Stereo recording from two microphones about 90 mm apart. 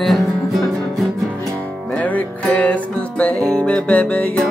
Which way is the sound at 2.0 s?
15° left (ahead or behind).